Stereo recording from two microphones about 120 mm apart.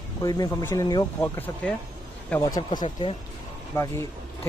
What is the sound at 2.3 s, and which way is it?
Speech, 30° left (ahead or behind).